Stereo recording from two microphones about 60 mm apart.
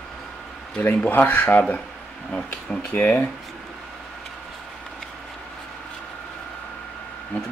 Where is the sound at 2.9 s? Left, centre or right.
Left.